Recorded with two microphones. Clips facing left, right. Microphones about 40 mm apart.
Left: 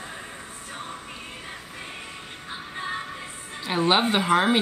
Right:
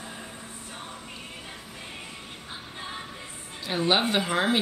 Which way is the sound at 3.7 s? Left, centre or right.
Centre.